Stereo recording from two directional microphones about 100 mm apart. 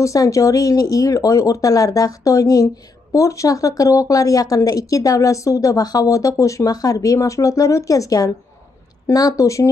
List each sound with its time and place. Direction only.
0.0 s speech: 35° left (ahead or behind)